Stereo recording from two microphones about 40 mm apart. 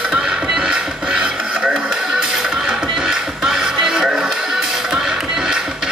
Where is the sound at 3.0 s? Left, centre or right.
Centre.